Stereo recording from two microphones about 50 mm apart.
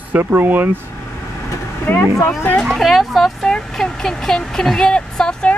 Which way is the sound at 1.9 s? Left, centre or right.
Left.